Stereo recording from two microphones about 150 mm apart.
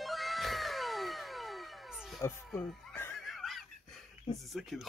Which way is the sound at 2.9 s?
15° left (ahead or behind).